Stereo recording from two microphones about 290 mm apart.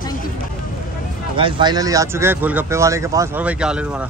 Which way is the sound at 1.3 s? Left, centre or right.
Centre.